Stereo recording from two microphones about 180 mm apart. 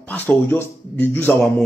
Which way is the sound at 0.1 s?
10° left (ahead or behind).